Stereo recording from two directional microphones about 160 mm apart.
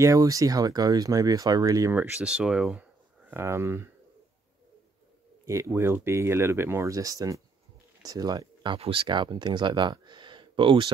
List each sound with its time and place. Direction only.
0.0 s speech: 20° right (ahead or behind); by 2.8 s 5° right (ahead or behind)
3.3 s speech: 15° right (ahead or behind)
5.4 s speech: 15° right (ahead or behind); by 10.9 s 35° right (ahead or behind)